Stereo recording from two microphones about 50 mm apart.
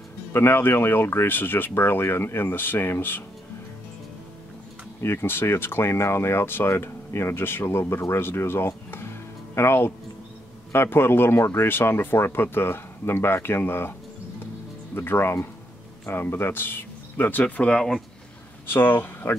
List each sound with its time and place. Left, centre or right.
0.3 s speech: left
0.6 s speech: left
5.0 s speech: left
15.0 s speech: left
17.4 s speech: left
18.7 s speech: left